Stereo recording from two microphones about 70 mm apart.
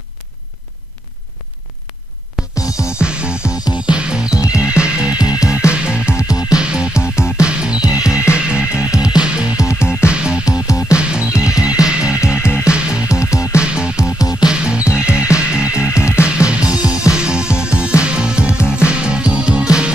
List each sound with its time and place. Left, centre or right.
2.4 s music: centre
6.1 s music: left
6.5 s music: centre
12.4 s music: left
12.6 s music: centre
13.1 s music: left
13.6 s music: centre
14.0 s music: left
14.4 s music: centre